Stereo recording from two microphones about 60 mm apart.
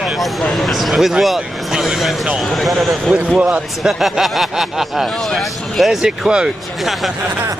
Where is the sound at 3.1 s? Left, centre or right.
Right.